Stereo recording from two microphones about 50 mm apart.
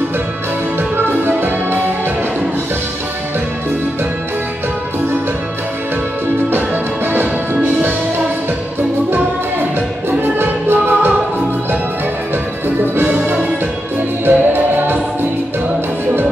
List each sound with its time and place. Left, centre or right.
0.7 s music: right
6.5 s music: right
9.1 s music: right
12.9 s music: right